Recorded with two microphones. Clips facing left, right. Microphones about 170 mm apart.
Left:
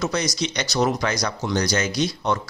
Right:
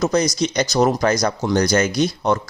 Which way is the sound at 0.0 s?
45° right (ahead or behind).